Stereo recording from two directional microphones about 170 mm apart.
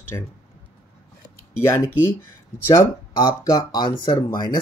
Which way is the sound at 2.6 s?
20° left (ahead or behind).